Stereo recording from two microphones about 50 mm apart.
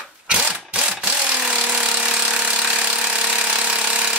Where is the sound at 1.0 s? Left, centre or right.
Right.